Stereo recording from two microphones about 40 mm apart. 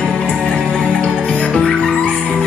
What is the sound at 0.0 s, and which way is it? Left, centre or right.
Music, left.